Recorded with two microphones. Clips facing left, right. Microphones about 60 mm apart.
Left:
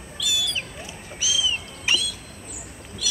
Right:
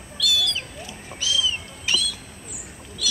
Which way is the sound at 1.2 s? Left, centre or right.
Centre.